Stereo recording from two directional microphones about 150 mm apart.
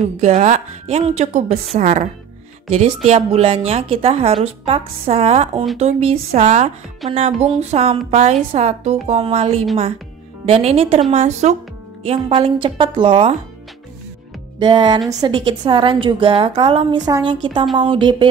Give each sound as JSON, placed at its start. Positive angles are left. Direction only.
{"t": 0.2, "sound": "a woman's voice", "side_deg": -50}
{"t": 14.6, "sound": "a woman's voice", "side_deg": -30}